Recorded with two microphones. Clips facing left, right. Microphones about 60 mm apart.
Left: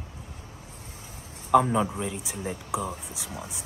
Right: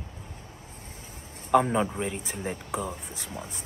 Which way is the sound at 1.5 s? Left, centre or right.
Centre.